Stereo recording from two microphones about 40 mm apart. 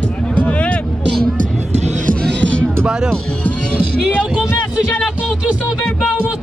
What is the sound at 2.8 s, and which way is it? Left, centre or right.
Speech, centre.